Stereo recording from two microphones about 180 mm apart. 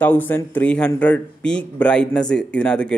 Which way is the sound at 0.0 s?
10° left (ahead or behind).